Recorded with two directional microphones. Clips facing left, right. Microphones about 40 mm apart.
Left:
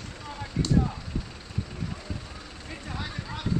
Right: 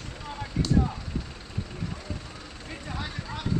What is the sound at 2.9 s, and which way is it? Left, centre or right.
Vehicle, centre.